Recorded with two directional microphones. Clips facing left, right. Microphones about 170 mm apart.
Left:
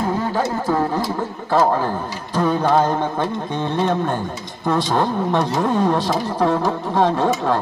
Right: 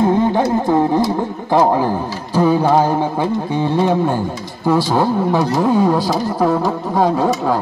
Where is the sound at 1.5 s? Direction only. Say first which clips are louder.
Right 3 dB; 15° right (ahead or behind).